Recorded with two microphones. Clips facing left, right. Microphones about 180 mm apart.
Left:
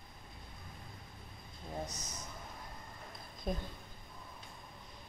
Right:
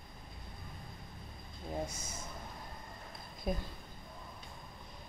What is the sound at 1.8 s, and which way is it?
Speech, 30° right (ahead or behind).